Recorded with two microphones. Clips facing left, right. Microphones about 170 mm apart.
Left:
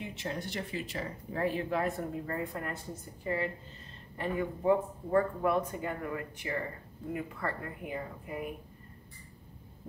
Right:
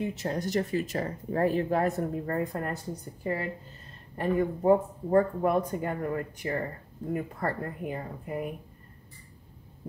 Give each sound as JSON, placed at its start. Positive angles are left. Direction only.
{"t": 0.1, "sound": "speech", "side_deg": -40}
{"t": 4.2, "sound": "speech", "side_deg": -40}